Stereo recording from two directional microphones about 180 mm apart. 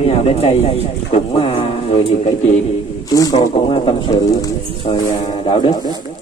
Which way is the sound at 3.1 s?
20° left (ahead or behind).